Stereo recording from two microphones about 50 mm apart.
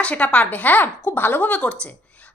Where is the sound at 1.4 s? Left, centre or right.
Left.